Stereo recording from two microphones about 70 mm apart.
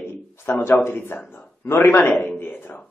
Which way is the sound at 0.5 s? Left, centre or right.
Left.